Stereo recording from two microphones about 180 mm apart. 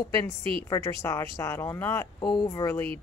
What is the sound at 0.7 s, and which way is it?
Speech, 20° left (ahead or behind).